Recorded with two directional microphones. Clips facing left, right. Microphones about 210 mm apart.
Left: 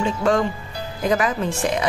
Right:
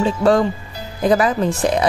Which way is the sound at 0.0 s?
35° right (ahead or behind).